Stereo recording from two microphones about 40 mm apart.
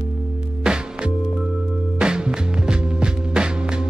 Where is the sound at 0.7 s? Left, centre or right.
Centre.